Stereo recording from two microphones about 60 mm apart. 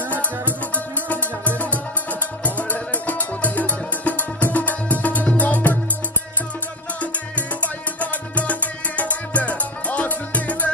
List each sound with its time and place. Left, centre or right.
0.7 s music: left
7.6 s music: left